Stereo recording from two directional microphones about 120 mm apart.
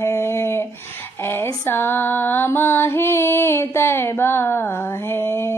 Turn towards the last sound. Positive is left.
turn(degrees=20)  # may be behind; listen again after turning